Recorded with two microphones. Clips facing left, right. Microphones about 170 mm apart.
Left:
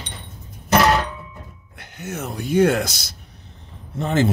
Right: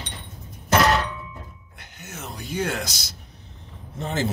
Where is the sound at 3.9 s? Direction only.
65° left (ahead or behind).